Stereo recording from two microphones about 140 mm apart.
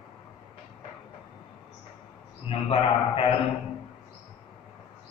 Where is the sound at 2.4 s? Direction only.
40° left (ahead or behind).